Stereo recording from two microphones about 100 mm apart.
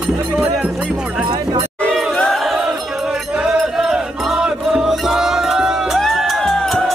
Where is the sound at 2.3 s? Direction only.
Centre (ahead or behind).